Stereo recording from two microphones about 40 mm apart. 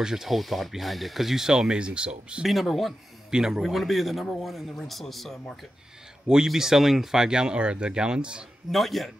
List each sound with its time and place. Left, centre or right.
0.0 s speech: centre
0.4 s speech: centre; by 2.4 s right
2.4 s a man's voice: centre
3.3 s speech: centre
3.6 s a man's voice: centre
6.2 s speech: centre
8.7 s a man's voice: centre